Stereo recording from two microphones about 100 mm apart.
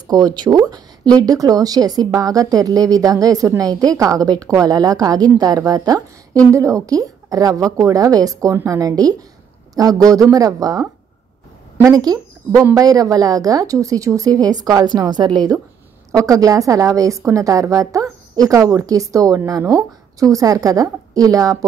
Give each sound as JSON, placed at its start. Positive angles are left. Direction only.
{"t": 0.0, "sound": "speech", "side_deg": -45}